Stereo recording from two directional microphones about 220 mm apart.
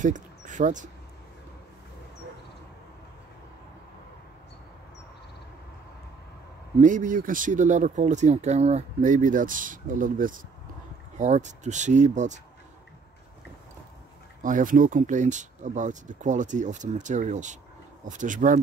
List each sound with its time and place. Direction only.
0.0 s speech: 35° right (ahead or behind)
6.8 s speech: 35° right (ahead or behind)
14.4 s speech: 35° right (ahead or behind)